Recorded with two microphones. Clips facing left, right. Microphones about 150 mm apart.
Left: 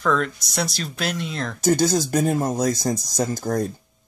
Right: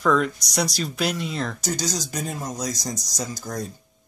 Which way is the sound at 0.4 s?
5° left (ahead or behind).